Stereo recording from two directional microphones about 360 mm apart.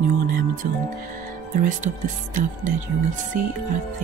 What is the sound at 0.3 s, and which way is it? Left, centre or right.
Music, right.